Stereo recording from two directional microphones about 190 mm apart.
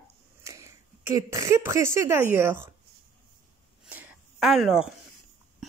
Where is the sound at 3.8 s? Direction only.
10° right (ahead or behind).